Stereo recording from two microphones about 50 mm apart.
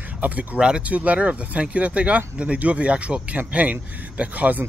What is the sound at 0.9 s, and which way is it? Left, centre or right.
Speech, right.